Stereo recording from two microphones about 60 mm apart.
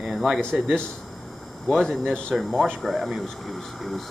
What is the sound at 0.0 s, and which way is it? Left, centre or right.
Speech, centre.